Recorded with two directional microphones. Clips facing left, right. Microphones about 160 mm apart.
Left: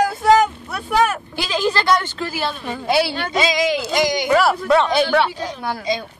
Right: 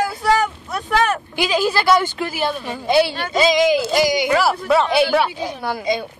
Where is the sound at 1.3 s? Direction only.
10° right (ahead or behind).